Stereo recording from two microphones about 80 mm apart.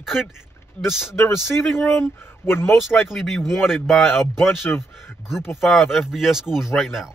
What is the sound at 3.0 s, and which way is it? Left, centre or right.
A man's voice, centre.